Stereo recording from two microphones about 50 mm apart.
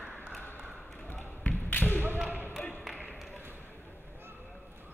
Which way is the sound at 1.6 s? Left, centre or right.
Left.